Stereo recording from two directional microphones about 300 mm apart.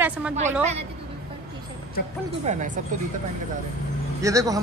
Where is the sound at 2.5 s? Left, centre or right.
Right.